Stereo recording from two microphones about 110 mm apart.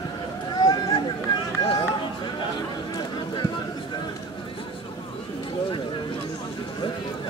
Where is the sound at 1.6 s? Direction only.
55° left (ahead or behind).